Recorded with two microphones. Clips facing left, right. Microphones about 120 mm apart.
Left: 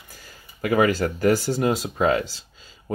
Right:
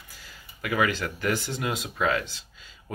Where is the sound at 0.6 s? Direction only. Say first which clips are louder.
Left 7 dB; 35° left (ahead or behind).